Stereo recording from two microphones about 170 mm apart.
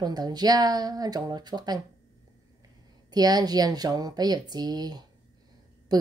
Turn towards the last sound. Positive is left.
turn(degrees=-25)  # may be behind; listen again after turning